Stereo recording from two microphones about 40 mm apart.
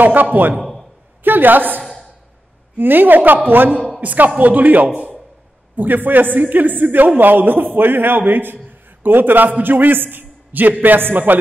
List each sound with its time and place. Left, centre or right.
0.0 s a man's voice: right
0.6 s a sound: centre
1.2 s a woman's voice: right
2.8 s a man's voice: right
4.0 s a man's voice: right